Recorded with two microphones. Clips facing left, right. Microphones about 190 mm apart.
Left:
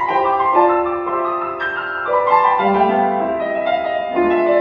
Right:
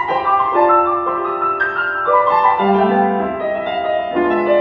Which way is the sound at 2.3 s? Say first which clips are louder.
Right 1 dB; 15° left (ahead or behind).